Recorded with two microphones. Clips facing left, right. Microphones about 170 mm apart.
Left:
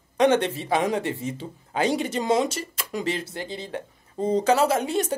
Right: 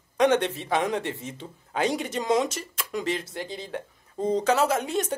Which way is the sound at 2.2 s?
30° left (ahead or behind).